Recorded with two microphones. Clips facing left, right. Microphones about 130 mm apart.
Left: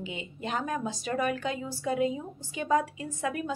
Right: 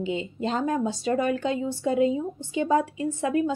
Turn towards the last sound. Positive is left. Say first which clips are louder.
# right 8 dB
turn(degrees=-25)  # may be behind; listen again after turning